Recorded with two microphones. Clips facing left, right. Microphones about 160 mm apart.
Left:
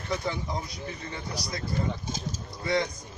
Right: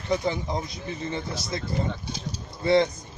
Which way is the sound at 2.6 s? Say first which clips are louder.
Right 7 dB; 25° right (ahead or behind).